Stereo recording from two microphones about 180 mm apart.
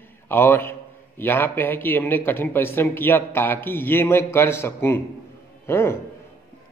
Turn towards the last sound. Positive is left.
turn(degrees=15)  # may be behind; listen again after turning